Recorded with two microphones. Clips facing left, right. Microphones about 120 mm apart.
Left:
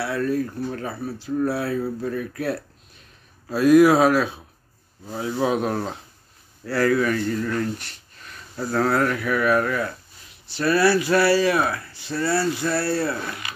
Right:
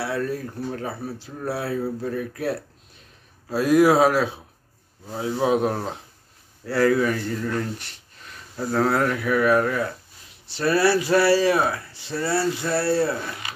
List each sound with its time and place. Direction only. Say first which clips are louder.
0.0 s speech: left 3 dB; 25° right (ahead or behind)